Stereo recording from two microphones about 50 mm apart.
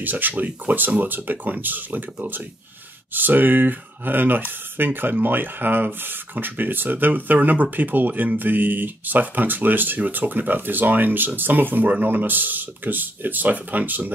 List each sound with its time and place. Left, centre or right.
0.0 s speech: right